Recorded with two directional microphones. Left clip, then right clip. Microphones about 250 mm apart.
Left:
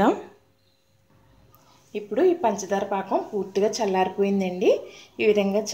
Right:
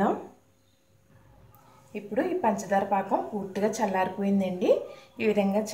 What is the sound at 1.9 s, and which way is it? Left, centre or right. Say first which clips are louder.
Speech: left 7 dB; left.